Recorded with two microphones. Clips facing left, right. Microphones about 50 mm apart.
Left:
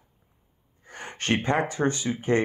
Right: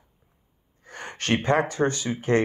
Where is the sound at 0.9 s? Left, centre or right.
Left.